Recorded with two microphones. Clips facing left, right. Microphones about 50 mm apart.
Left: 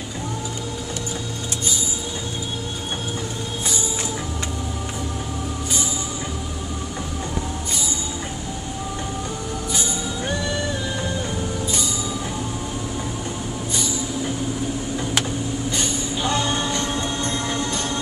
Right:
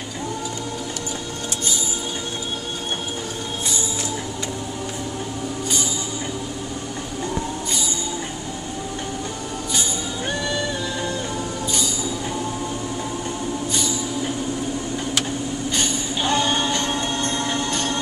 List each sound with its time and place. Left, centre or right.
15.7 s singing: right